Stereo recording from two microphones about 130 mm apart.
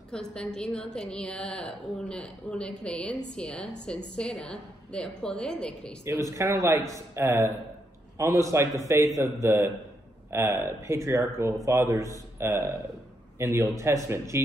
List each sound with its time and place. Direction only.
0.1 s a woman's voice: 5° left (ahead or behind)
6.0 s a man's voice: 25° right (ahead or behind)